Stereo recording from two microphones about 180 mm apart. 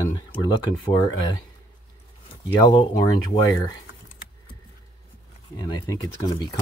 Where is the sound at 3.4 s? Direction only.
15° left (ahead or behind).